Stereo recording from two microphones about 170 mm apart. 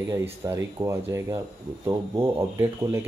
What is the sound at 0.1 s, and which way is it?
Speech, 15° right (ahead or behind).